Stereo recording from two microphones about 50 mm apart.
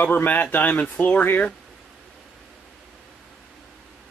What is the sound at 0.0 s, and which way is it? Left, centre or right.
Speech, left.